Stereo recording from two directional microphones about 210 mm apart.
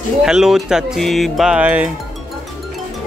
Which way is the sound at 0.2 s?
5° right (ahead or behind).